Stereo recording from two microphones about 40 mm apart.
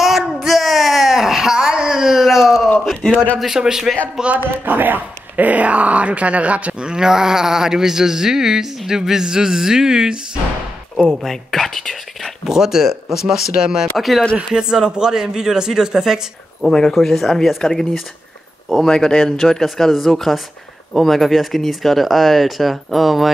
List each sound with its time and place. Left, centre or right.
0.4 s a sound: centre
2.9 s a man's voice: centre
3.4 s speech: centre
4.6 s speech: right
6.9 s speech: centre
11.2 s speech: centre
12.4 s speech: centre
13.9 s speech: centre
14.3 s speech: centre
16.7 s speech: centre